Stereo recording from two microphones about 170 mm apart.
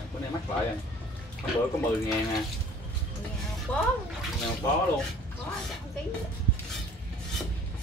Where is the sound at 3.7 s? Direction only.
10° left (ahead or behind).